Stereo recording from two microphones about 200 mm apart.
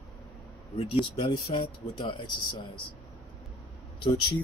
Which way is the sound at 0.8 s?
25° left (ahead or behind).